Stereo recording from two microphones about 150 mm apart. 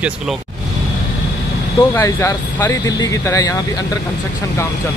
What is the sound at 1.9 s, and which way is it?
Speech, 15° left (ahead or behind).